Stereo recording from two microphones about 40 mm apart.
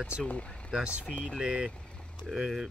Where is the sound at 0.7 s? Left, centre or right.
Right.